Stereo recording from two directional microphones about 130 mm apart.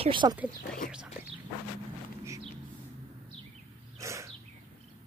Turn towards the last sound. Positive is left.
turn(degrees=-25)  # may be behind; listen again after turning